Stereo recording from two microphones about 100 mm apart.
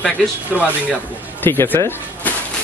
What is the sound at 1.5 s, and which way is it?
Speech, 20° left (ahead or behind).